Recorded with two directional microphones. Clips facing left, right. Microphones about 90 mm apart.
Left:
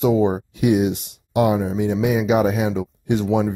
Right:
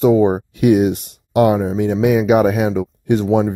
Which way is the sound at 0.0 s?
45° right (ahead or behind).